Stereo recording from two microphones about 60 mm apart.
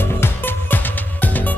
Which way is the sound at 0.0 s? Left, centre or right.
Left.